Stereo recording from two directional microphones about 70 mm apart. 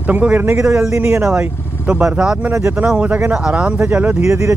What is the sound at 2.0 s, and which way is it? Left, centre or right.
Speech, centre.